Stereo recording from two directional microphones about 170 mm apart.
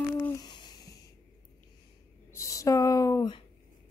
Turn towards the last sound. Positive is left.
turn(degrees=25)  # may be behind; listen again after turning